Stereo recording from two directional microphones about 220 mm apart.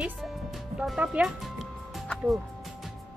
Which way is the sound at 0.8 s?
5° right (ahead or behind).